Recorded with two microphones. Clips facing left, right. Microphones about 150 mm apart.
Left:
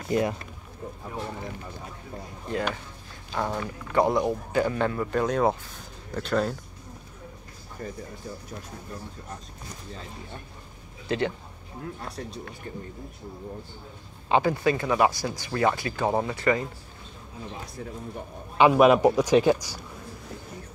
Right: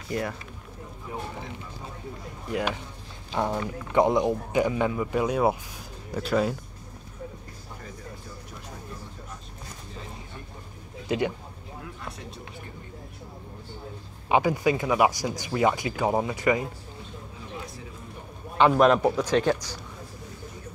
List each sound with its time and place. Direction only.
0.1 s speech: 20° left (ahead or behind)
2.5 s speech: 15° right (ahead or behind)
11.1 s speech: 15° right (ahead or behind)
14.3 s speech: 15° right (ahead or behind)
18.6 s a man's voice: 10° left (ahead or behind)